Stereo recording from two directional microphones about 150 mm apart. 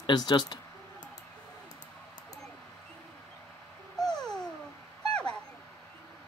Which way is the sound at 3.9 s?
5° left (ahead or behind).